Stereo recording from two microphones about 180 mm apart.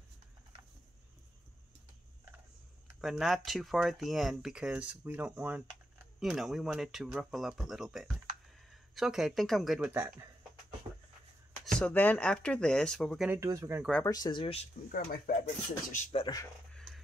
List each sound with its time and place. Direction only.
3.0 s speech: centre (ahead or behind)
11.6 s speech: 10° left (ahead or behind)
13.3 s speech: 15° right (ahead or behind)
14.0 s speech: 20° left (ahead or behind)
14.9 s speech: 50° left (ahead or behind)
16.2 s speech: 20° left (ahead or behind)
16.7 s music: centre (ahead or behind)